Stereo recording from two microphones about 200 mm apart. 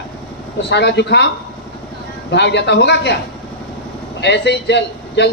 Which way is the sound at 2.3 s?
60° left (ahead or behind).